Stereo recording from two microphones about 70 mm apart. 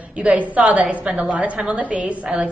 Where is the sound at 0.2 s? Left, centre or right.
Centre.